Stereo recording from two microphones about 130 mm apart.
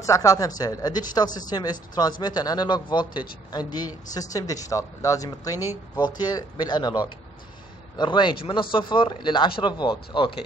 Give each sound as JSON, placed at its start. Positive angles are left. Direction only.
{"t": 0.0, "sound": "speech", "side_deg": 25}